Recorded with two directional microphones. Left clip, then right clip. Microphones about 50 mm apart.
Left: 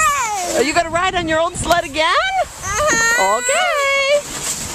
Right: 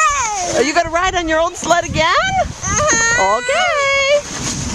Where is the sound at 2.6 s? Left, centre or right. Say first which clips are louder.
Even; centre.